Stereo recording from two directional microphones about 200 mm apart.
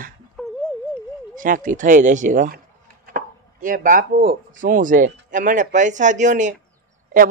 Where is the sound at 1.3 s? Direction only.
40° right (ahead or behind).